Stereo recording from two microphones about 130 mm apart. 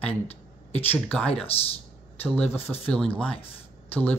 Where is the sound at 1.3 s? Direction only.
50° left (ahead or behind).